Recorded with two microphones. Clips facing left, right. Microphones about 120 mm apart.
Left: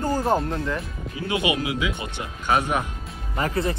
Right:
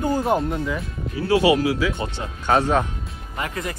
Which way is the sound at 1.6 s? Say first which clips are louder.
Right 5 dB; 20° left (ahead or behind).